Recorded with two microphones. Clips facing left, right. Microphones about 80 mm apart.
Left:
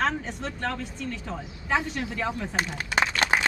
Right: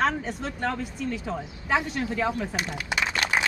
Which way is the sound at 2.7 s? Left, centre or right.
Left.